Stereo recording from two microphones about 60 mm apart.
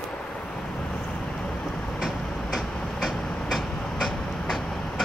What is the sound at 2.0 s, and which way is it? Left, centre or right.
Vehicle, centre.